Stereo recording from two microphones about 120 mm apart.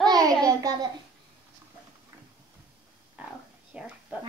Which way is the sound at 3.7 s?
10° right (ahead or behind).